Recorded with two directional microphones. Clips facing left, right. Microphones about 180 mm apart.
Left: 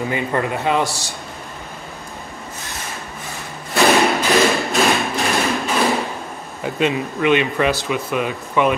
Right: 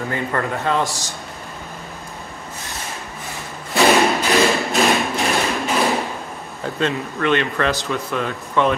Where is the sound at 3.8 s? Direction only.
Centre (ahead or behind).